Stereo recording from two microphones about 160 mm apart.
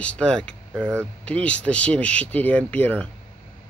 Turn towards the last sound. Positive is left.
turn(degrees=10)  # may be behind; listen again after turning